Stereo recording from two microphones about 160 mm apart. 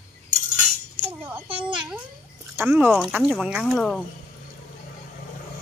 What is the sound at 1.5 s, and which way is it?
Speech, 30° right (ahead or behind).